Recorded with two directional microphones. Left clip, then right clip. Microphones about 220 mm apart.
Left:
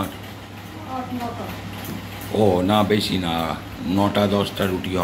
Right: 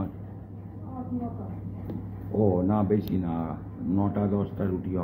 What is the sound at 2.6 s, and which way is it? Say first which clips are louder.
Speech: left 8 dB; 10° left (ahead or behind).